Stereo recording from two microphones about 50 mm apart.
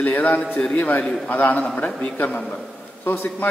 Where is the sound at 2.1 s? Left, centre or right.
Left.